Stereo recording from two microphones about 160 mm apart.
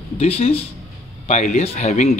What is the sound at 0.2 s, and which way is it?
Speech, 40° left (ahead or behind).